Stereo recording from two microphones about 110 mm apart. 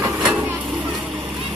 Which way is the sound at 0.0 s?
15° right (ahead or behind).